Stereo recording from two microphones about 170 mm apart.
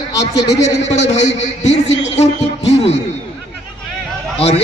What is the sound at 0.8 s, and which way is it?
A man's voice, 40° left (ahead or behind).